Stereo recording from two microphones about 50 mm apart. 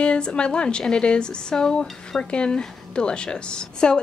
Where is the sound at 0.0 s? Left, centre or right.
Left.